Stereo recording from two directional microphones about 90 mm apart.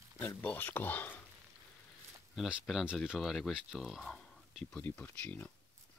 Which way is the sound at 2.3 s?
Centre (ahead or behind).